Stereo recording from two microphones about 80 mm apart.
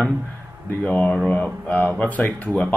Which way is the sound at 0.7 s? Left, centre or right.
Centre.